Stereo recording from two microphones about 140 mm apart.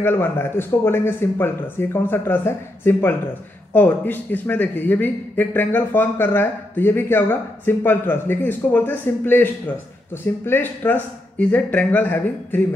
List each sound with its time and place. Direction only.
0.0 s a man's voice: 15° left (ahead or behind)